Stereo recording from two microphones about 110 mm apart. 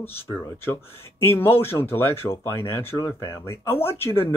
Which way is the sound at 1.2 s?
20° left (ahead or behind).